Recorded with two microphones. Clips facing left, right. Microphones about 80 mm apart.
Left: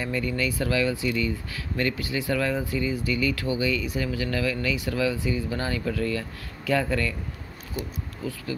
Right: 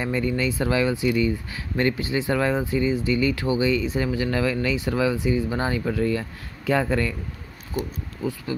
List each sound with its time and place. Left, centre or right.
0.0 s speech: right